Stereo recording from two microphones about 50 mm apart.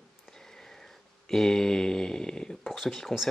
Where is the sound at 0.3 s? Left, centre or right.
Centre.